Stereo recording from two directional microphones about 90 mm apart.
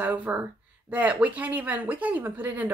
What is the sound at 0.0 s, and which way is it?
Speech, 15° right (ahead or behind).